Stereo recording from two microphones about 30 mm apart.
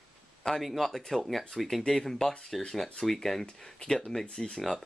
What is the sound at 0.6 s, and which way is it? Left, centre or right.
Speech, centre.